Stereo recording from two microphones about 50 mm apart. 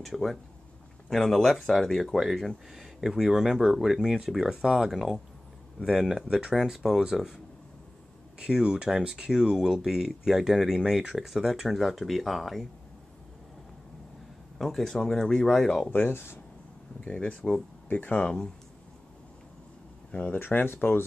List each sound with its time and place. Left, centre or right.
0.0 s speech: centre
14.6 s speech: centre
15.9 s speech: left
17.0 s speech: left
17.9 s speech: left
18.2 s speech: centre
20.2 s speech: left